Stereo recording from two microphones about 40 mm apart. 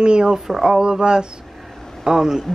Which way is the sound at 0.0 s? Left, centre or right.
Right.